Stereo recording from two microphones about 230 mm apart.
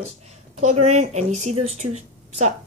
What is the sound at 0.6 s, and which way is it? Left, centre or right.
Speech, right.